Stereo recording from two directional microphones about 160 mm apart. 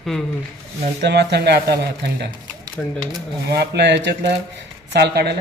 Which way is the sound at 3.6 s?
90° right.